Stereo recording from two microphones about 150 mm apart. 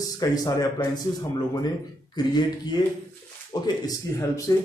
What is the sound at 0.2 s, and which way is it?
Speech, 25° left (ahead or behind).